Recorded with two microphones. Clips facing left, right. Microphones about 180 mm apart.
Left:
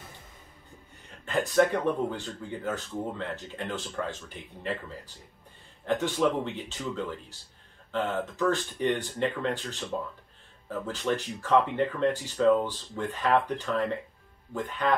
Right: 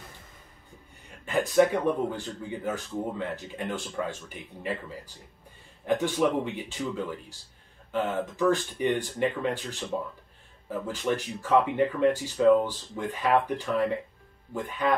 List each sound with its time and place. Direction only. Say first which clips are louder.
1.2 s speech: right 2 dB; 10° right (ahead or behind)